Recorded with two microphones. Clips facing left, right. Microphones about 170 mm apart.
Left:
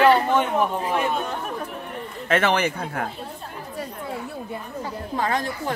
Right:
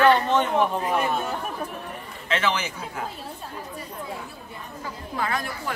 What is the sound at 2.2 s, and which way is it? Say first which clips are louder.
Speech: left 5 dB; 55° left (ahead or behind).